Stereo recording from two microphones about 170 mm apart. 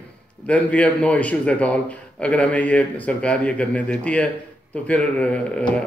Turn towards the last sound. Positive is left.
turn(degrees=5)  # may be behind; listen again after turning